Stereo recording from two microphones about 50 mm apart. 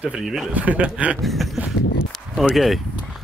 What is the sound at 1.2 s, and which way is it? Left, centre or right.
Speech, centre.